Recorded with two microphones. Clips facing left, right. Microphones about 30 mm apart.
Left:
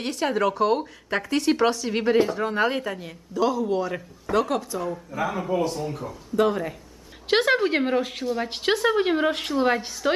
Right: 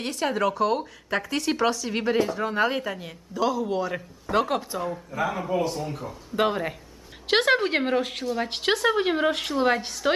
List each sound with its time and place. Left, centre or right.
0.0 s speech: centre
4.3 s a woman's voice: centre
4.7 s speech: centre
6.3 s speech: right
7.2 s a woman's voice: centre